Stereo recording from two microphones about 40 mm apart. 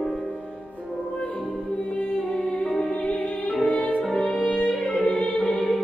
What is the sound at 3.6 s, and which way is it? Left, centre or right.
Music, left.